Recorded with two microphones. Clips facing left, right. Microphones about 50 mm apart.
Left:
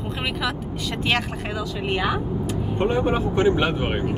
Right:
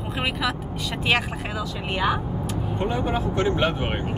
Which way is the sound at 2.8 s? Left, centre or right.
Left.